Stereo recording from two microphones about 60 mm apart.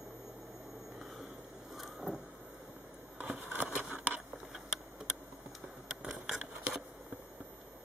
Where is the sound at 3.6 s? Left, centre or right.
Right.